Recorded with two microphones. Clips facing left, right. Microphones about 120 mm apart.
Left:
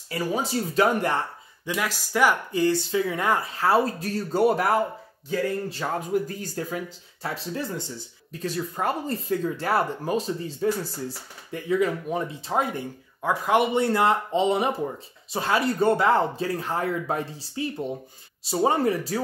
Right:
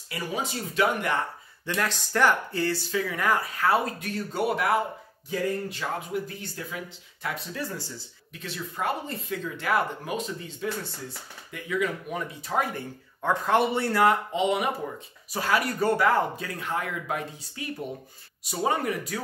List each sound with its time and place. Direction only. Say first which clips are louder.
0.1 s speech: left 5 dB; 35° left (ahead or behind)
1.7 s speech: left 1 dB; 10° left (ahead or behind); by 6.8 s 40° left (ahead or behind)
7.2 s speech: left 3 dB; 30° left (ahead or behind)
8.3 s speech: left 8 dB; 40° left (ahead or behind); by 12.8 s 25° left (ahead or behind)
13.2 s speech: left 1 dB; 10° left (ahead or behind); by 19.2 s 30° left (ahead or behind)